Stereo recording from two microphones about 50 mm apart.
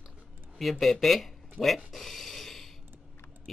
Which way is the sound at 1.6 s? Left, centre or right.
Centre.